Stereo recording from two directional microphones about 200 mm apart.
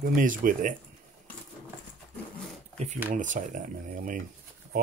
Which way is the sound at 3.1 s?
40° right (ahead or behind).